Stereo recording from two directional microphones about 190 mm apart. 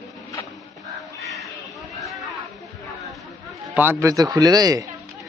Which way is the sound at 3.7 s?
15° right (ahead or behind).